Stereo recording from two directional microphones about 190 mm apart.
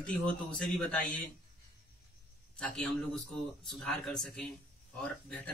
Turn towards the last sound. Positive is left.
turn(degrees=5)  # may be behind; listen again after turning